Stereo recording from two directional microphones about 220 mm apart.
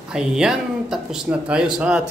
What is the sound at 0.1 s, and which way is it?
Speech, 5° right (ahead or behind).